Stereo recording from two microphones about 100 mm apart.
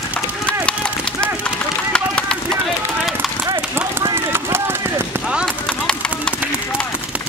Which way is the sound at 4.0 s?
25° right (ahead or behind).